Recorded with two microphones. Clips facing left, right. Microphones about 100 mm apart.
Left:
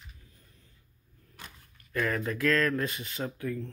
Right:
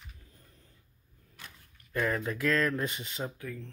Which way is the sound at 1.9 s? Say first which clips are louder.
Left 1 dB; 15° right (ahead or behind).